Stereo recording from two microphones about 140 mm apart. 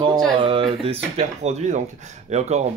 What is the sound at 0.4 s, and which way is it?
Speech, 40° right (ahead or behind).